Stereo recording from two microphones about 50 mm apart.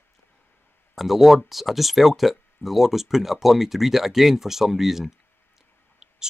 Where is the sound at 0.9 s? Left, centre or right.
Centre.